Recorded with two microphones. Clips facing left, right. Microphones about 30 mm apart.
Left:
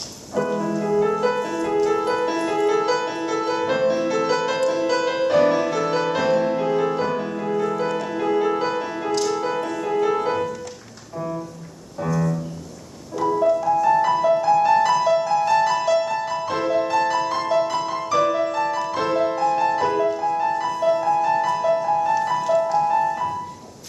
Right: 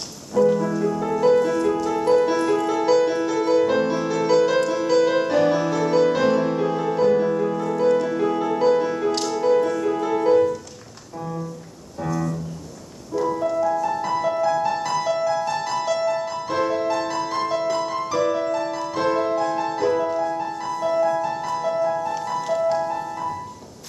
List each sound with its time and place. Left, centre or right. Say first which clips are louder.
0.3 s music: right 4 dB; centre
12.0 s music: left 2 dB; centre